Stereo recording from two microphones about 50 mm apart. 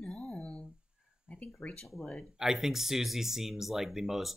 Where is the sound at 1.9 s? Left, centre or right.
Centre.